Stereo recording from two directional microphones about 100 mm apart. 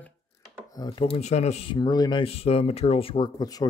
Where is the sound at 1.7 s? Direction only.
45° left (ahead or behind).